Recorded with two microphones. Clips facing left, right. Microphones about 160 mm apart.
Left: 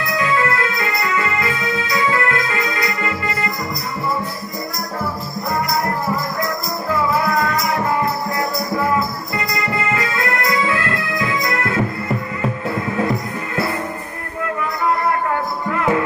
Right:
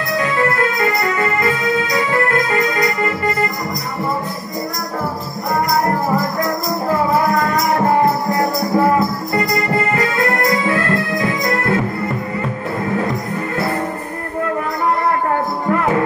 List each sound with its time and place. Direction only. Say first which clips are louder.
0.2 s music: right 2 dB; 40° right (ahead or behind)
7.8 s music: right 5 dB; 35° right (ahead or behind)